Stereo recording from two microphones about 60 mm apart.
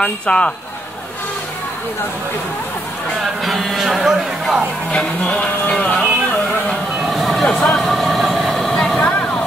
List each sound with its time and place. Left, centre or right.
0.0 s speech: centre
3.4 s speech: centre
3.8 s music: centre
4.9 s speech: left
7.1 s a sound: centre
7.6 s speech: centre
7.9 s vehicle: centre
8.9 s vehicle: left